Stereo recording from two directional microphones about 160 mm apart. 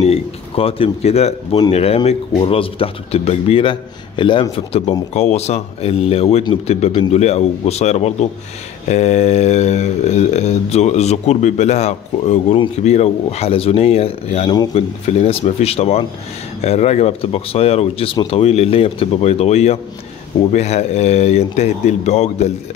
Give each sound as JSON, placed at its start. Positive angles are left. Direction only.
{"t": 0.0, "sound": "speech", "side_deg": 40}